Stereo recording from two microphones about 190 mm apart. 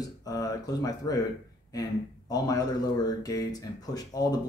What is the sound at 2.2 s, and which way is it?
Speech, 20° left (ahead or behind).